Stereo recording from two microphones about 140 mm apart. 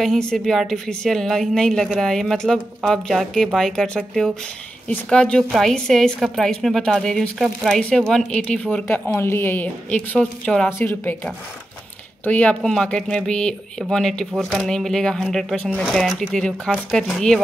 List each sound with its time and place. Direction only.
0.0 s speech: 5° left (ahead or behind)
10.7 s speech: 15° left (ahead or behind)
12.3 s speech: 10° left (ahead or behind)